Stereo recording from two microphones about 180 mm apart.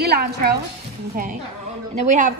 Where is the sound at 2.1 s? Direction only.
40° right (ahead or behind).